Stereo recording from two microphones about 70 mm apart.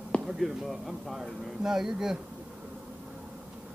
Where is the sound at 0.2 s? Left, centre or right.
Centre.